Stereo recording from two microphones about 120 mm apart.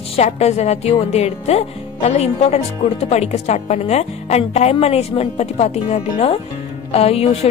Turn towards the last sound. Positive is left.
turn(degrees=55)  # may be behind; listen again after turning